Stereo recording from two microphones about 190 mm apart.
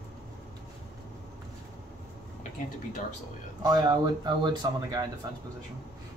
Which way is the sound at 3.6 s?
20° right (ahead or behind).